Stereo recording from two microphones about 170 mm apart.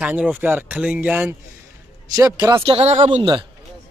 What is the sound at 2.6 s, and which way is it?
Speech, 35° right (ahead or behind).